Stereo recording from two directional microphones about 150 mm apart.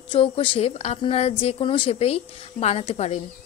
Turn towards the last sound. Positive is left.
turn(degrees=45)  # may be behind; listen again after turning